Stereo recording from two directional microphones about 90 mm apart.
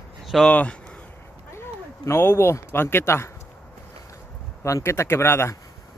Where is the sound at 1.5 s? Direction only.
30° left (ahead or behind).